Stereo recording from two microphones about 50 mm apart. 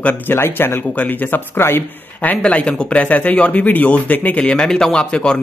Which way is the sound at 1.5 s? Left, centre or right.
Left.